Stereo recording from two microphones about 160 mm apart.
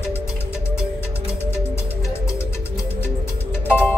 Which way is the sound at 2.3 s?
20° left (ahead or behind).